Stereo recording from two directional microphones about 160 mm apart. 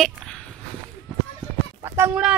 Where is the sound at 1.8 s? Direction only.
15° right (ahead or behind).